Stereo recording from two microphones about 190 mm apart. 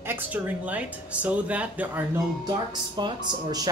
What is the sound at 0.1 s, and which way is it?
Speech, 10° right (ahead or behind).